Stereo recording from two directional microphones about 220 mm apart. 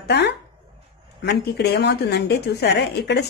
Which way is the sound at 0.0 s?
45° left (ahead or behind).